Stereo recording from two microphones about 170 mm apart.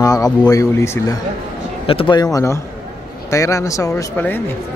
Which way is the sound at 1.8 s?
30° left (ahead or behind).